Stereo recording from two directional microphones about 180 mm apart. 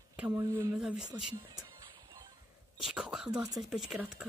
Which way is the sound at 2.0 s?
20° right (ahead or behind).